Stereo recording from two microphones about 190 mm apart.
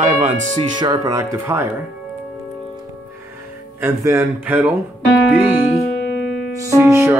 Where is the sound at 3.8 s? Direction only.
15° right (ahead or behind).